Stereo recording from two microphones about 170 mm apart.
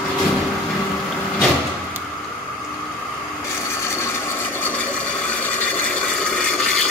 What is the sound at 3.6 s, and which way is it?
Ratchet, 15° left (ahead or behind).